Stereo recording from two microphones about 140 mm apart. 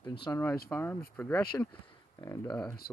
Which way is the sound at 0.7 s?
15° left (ahead or behind).